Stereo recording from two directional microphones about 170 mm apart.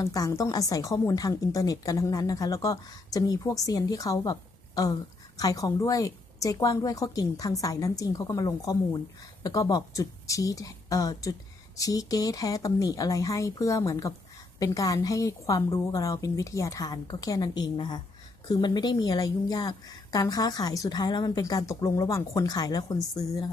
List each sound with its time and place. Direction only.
0.0 s a woman's voice: 20° left (ahead or behind)